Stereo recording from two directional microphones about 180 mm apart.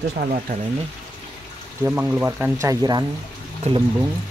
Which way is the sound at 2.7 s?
20° right (ahead or behind).